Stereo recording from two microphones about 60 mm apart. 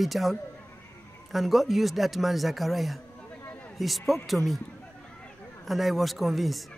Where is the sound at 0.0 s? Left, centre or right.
Centre.